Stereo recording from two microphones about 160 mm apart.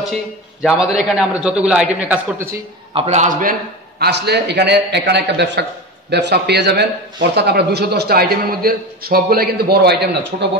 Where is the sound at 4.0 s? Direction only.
90° right.